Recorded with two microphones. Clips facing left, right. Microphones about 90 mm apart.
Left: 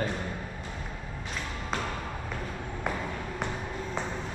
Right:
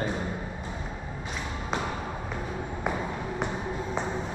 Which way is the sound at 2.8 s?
10° right (ahead or behind).